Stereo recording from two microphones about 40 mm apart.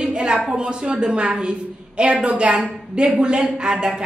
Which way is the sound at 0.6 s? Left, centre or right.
Right.